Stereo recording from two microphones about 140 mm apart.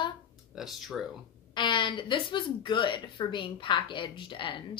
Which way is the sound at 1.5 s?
35° left (ahead or behind).